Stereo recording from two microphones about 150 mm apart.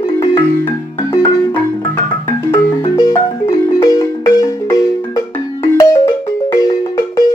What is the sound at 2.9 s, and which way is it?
Marimba, 25° left (ahead or behind).